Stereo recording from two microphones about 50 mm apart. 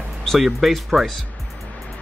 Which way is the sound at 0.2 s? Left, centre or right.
Centre.